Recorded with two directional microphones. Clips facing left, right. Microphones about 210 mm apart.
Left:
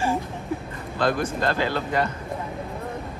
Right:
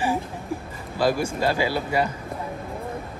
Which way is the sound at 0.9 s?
5° right (ahead or behind).